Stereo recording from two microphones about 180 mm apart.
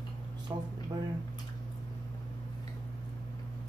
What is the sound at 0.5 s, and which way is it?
Speech, 20° right (ahead or behind).